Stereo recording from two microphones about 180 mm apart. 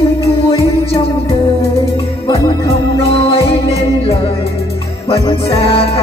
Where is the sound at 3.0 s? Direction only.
35° left (ahead or behind).